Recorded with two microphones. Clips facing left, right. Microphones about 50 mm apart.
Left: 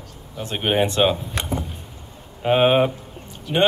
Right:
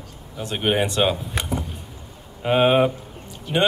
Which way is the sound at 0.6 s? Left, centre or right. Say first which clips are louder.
Left 1 dB; centre.